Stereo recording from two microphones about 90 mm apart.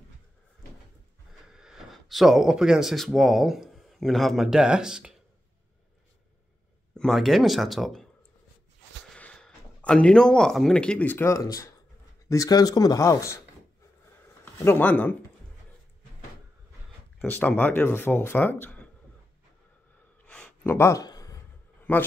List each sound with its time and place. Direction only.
1.5 s speech: 5° right (ahead or behind)
7.0 s speech: centre (ahead or behind)
9.1 s speech: 10° left (ahead or behind)
11.2 s speech: 40° left (ahead or behind)
14.4 s speech: 25° left (ahead or behind)
17.3 s speech: 20° left (ahead or behind)
20.2 s a sound: 15° left (ahead or behind)
20.6 s speech: 30° left (ahead or behind)
21.0 s a sound: 45° left (ahead or behind)
21.9 s a man's voice: 15° left (ahead or behind)